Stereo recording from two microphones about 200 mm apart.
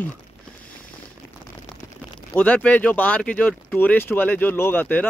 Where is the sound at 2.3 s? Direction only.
5° left (ahead or behind).